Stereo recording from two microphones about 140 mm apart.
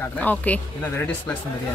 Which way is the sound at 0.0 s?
10° left (ahead or behind).